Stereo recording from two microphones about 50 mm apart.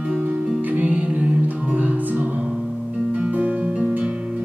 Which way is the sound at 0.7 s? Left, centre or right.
Right.